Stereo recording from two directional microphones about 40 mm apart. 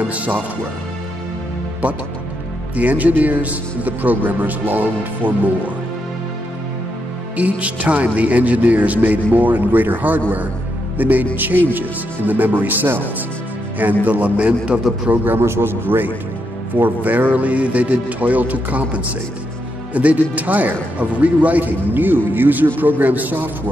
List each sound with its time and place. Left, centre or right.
2.7 s a man's voice: right
7.3 s a man's voice: right
14.0 s speech: right
15.2 s a man's voice: right
16.7 s speech: right
19.9 s speech: right
21.9 s a man's voice: right